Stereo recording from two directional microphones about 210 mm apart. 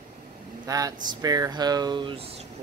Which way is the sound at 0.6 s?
15° right (ahead or behind).